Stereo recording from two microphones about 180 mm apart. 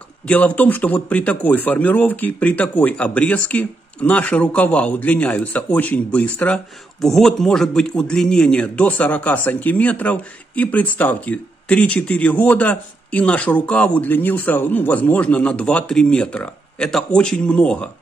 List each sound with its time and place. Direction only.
0.3 s a man's voice: 10° left (ahead or behind)